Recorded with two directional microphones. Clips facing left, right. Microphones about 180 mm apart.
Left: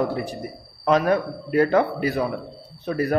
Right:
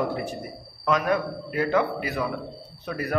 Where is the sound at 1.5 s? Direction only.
45° left (ahead or behind).